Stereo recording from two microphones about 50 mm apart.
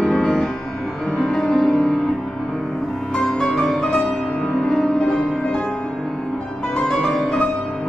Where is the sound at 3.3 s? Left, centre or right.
Centre.